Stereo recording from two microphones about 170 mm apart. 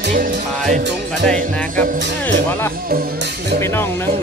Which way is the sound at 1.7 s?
50° right (ahead or behind).